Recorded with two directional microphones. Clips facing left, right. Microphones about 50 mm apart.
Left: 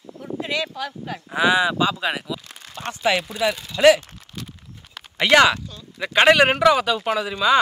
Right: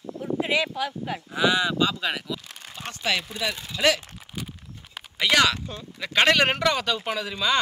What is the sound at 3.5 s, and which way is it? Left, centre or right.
Speech, centre.